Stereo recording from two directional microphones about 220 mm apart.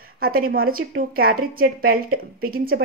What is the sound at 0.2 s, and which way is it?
Speech, 45° right (ahead or behind).